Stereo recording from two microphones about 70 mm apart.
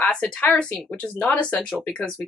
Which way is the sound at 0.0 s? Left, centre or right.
Centre.